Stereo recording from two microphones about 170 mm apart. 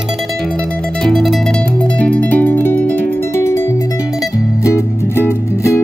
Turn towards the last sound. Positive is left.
turn(degrees=15)  # may be behind; listen again after turning